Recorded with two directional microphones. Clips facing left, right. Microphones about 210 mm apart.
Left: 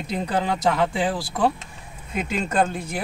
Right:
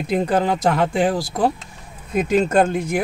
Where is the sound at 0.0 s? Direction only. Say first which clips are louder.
Right 6 dB; 50° right (ahead or behind).